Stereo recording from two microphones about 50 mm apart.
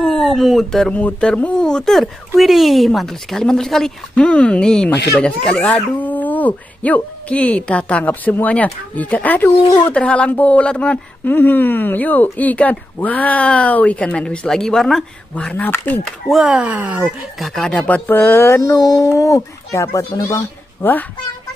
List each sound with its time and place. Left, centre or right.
0.0 s speech: centre
0.9 s speech: left
1.3 s speech: centre
4.2 s a woman's voice: left
5.9 s a woman's voice: left
11.2 s speech: left
14.5 s speech: centre
15.5 s speech: left
16.3 s speech: centre
16.6 s speech: right
17.0 s speech: centre
18.0 s speech: left
18.5 s a child's voice: left